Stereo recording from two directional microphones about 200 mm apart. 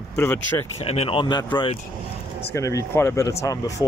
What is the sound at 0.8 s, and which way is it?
Speech, 30° left (ahead or behind).